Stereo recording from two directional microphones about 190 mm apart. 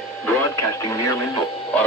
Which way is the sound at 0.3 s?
15° left (ahead or behind).